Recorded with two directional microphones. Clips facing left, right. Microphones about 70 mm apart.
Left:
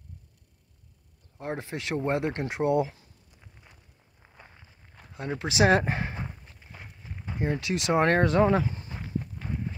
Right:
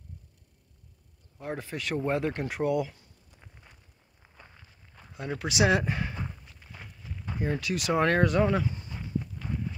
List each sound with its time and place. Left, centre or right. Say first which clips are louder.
1.4 s speech: left 1 dB; left
4.2 s walk: left 1 dB; centre
5.4 s speech: left 3 dB; left
7.0 s a sound: even; left
7.2 s speech: left 1 dB; centre
8.0 s speech: left 2 dB; left